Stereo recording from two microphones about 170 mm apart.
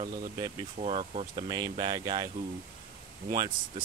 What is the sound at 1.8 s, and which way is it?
Speech, 25° right (ahead or behind).